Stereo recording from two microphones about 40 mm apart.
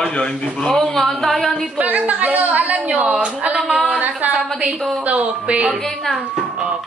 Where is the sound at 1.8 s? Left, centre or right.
Right.